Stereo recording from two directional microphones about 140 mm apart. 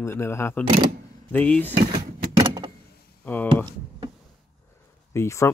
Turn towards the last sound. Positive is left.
turn(degrees=20)  # may be behind; listen again after turning